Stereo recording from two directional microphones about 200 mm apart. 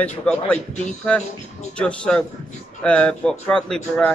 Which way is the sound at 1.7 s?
5° left (ahead or behind).